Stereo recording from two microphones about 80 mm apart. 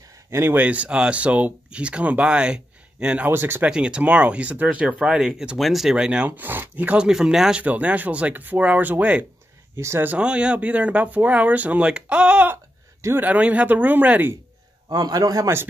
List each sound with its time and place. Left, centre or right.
0.3 s speech: right
0.6 s speech: centre
3.3 s speech: right
3.6 s speech: centre
7.1 s speech: centre
7.6 s speech: centre
9.8 s speech: right
10.0 s speech: centre
14.9 s a man's voice: right